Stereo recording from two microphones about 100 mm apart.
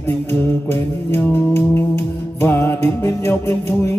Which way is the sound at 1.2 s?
20° left (ahead or behind).